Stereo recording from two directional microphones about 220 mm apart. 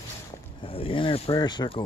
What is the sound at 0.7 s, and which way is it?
Speech, 25° left (ahead or behind).